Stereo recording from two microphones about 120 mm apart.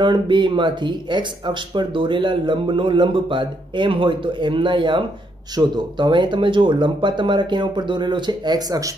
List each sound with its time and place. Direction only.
0.0 s speech: 40° right (ahead or behind)